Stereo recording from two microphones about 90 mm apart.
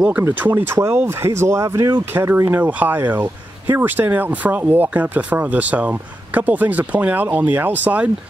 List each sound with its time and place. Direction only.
0.4 s speech: 20° right (ahead or behind)
2.6 s speech: 20° right (ahead or behind)